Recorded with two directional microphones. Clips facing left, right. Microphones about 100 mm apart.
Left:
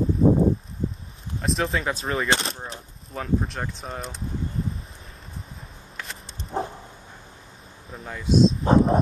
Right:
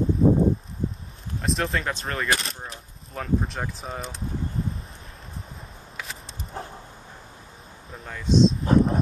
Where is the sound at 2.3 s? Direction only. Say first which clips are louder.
Even; 30° left (ahead or behind).